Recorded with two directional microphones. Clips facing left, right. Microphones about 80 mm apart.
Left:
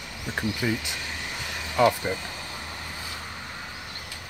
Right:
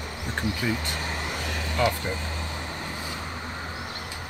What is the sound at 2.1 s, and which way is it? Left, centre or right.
Vehicle, right.